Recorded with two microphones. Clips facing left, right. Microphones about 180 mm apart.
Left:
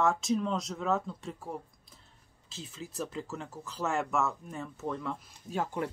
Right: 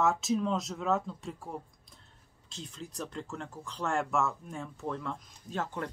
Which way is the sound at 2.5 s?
5° left (ahead or behind).